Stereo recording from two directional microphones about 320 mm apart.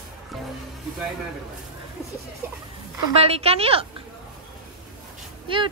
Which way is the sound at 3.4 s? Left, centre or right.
Centre.